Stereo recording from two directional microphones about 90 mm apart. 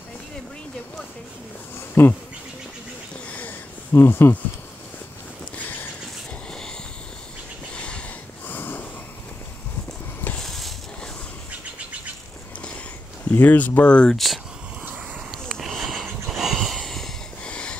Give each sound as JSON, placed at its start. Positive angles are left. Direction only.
{"t": 2.0, "sound": "speech", "side_deg": 30}
{"t": 3.3, "sound": "sniff", "side_deg": 15}
{"t": 3.9, "sound": "speech", "side_deg": 25}
{"t": 7.7, "sound": "a sound", "side_deg": 10}
{"t": 8.5, "sound": "wheeze", "side_deg": 20}
{"t": 10.4, "sound": "mechanisms", "side_deg": 5}
{"t": 13.3, "sound": "speech", "side_deg": 20}
{"t": 15.3, "sound": "a sound", "side_deg": 0}